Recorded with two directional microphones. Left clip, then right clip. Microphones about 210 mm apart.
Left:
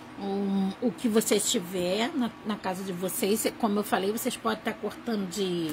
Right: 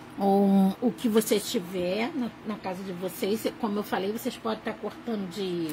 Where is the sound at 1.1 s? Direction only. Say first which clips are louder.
Even; centre (ahead or behind).